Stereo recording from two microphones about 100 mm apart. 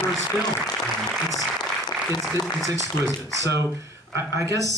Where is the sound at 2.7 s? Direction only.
35° right (ahead or behind).